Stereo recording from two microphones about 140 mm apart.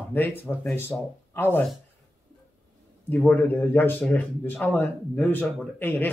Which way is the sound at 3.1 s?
10° left (ahead or behind).